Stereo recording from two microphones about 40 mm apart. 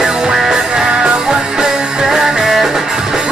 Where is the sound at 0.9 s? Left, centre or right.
Centre.